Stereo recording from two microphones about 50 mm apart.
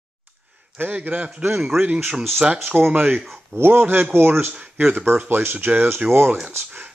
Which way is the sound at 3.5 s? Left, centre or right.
Right.